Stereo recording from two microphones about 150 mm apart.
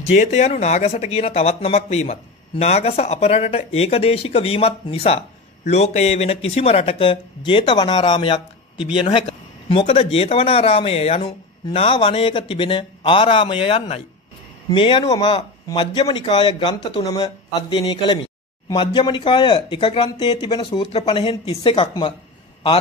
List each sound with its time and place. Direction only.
0.1 s speech: 50° left (ahead or behind); by 22.1 s 35° left (ahead or behind)